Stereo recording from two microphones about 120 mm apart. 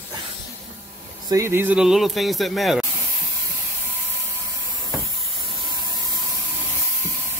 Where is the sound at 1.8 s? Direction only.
5° right (ahead or behind).